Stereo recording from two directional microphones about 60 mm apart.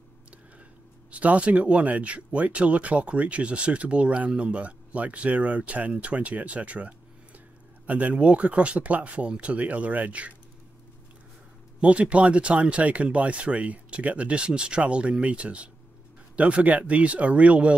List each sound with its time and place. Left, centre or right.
1.1 s speech: right
11.8 s speech: right